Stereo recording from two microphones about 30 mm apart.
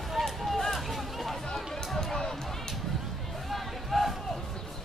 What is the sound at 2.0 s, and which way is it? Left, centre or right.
Run, centre.